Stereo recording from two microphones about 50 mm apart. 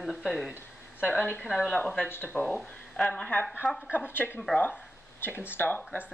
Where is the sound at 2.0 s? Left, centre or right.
Left.